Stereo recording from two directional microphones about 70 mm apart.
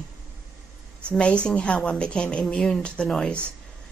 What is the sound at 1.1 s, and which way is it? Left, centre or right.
A woman's voice, centre.